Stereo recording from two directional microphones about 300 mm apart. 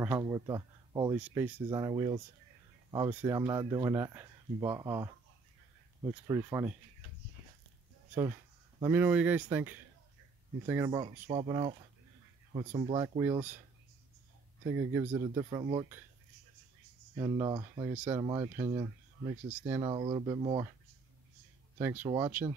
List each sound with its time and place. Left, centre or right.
0.0 s speech: centre
8.8 s speech: centre
14.7 s speech: centre
17.2 s speech: centre
21.7 s speech: centre